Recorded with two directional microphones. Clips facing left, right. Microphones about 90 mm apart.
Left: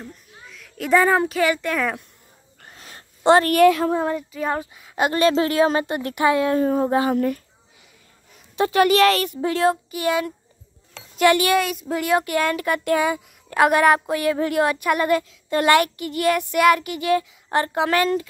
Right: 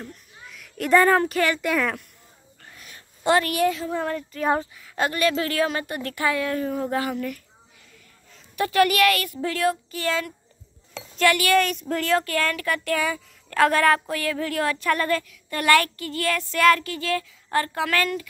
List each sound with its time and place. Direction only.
0.0 s a child's voice: centre (ahead or behind)
2.8 s a sound: 35° left (ahead or behind)
3.5 s a woman's voice: 65° left (ahead or behind)
3.9 s a woman's voice: 20° left (ahead or behind)
6.6 s a sound: 35° left (ahead or behind)
6.9 s speech: 25° left (ahead or behind)
7.2 s a sound: 35° left (ahead or behind)
8.5 s speech: 25° left (ahead or behind)
11.6 s speech: 5° left (ahead or behind); by 18.3 s 25° left (ahead or behind)